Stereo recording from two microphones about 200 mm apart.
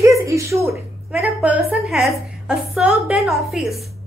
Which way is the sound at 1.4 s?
Centre (ahead or behind).